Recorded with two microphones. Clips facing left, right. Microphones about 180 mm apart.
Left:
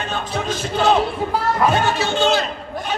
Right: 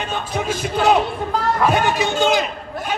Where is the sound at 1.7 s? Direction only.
15° right (ahead or behind).